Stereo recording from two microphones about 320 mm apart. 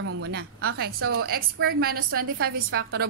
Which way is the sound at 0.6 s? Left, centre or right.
Right.